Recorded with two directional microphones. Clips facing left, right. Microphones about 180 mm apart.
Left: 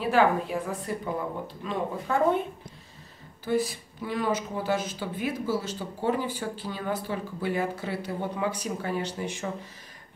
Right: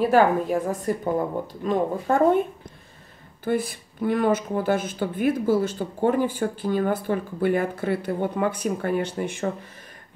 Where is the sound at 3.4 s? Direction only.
55° right (ahead or behind).